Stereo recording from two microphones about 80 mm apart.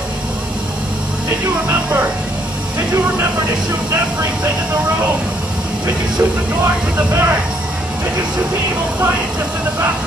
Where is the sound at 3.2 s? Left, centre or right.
Right.